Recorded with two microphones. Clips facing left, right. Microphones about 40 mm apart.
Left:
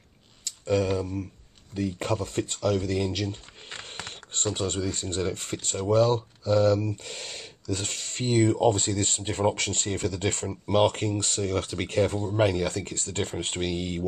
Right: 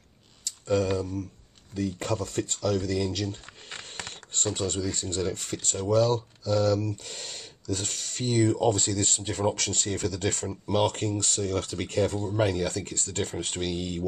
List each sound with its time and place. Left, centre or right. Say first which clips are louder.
0.5 s speech: left 1 dB; left
3.7 s a sound: left 1 dB; centre
4.6 s speech: left 1 dB; left